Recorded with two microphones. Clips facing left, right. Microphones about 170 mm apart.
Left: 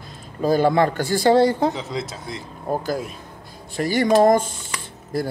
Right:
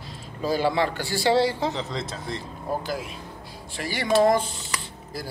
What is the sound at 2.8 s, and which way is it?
Speech, 45° left (ahead or behind).